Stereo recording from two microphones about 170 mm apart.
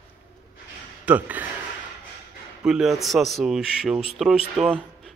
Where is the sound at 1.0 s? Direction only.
10° right (ahead or behind).